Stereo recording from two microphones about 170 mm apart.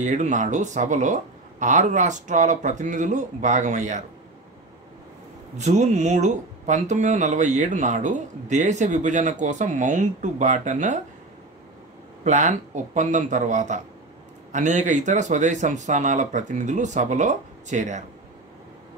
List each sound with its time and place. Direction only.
0.0 s speech: 45° right (ahead or behind)
5.6 s speech: 45° right (ahead or behind)
12.3 s speech: 45° right (ahead or behind)